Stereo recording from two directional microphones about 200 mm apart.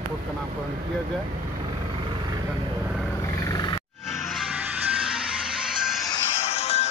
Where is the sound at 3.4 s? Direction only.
20° left (ahead or behind).